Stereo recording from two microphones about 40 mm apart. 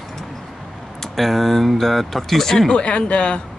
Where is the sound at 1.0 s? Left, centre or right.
Centre.